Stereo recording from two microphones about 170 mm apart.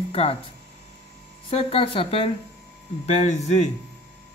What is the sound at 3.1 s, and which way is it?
Speech, 40° left (ahead or behind).